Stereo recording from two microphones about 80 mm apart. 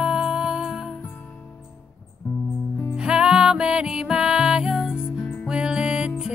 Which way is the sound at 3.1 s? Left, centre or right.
Centre.